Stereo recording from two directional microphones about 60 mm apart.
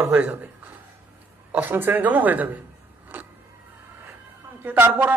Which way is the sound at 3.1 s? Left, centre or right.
Right.